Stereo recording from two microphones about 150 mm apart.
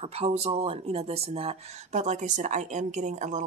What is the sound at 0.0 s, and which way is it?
Speech, 45° right (ahead or behind).